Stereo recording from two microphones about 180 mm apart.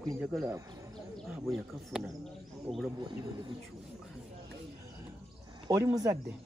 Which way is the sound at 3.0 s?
25° right (ahead or behind).